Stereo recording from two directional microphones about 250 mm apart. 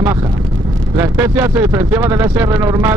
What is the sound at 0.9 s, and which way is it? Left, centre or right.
Speech, centre.